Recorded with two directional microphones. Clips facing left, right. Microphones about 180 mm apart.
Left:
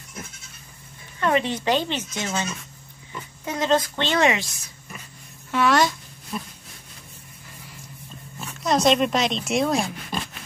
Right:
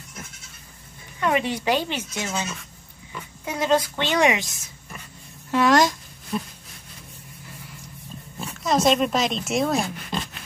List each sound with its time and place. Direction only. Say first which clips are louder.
1.2 s speech: left 1 dB; 10° right (ahead or behind)
5.5 s a child's voice: right 2 dB; 40° right (ahead or behind)
8.5 s speech: even; 5° right (ahead or behind)